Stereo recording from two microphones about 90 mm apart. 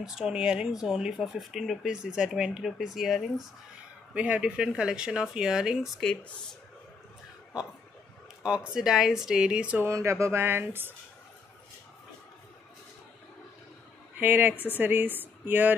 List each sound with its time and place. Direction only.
0.0 s speech: 5° right (ahead or behind)
4.1 s speech: 15° right (ahead or behind)
8.4 s speech: 10° right (ahead or behind)
9.8 s speech: 35° right (ahead or behind)
14.1 s a woman's voice: 20° right (ahead or behind)
14.5 s a woman's voice: 20° left (ahead or behind)
14.8 s speech: 20° right (ahead or behind)